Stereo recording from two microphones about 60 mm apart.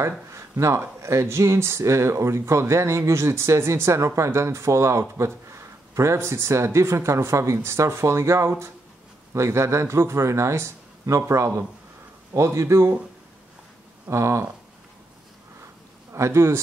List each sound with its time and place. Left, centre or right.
0.3 s speech: right
14.0 s speech: right
16.1 s a man's voice: right